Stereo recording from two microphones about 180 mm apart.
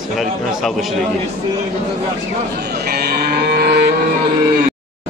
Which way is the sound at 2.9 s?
60° right (ahead or behind).